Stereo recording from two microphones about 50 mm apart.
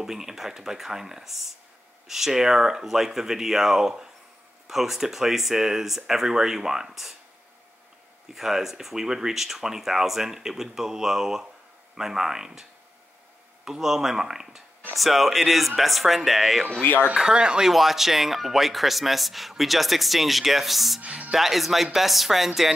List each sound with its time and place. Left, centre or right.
0.0 s speech: centre
8.3 s speech: centre
13.7 s speech: centre
16.8 s speech: left
17.3 s speech: centre
17.6 s speech: centre
21.0 s speech: right
21.3 s speech: centre